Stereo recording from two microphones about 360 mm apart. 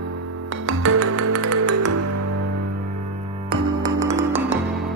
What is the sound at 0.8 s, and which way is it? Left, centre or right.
Music, right.